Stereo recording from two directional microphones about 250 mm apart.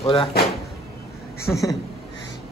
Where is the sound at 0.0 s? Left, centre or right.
Left.